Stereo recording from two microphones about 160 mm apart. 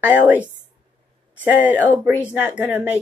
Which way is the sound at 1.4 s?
10° right (ahead or behind).